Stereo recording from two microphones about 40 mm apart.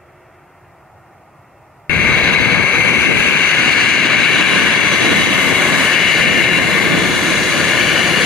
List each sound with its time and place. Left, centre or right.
1.9 s vehicle: left; by 5.2 s centre
5.2 s vehicle: left
5.5 s vehicle: centre